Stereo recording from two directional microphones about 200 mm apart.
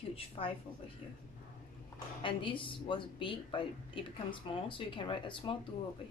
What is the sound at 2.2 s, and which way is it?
Speech, 25° left (ahead or behind).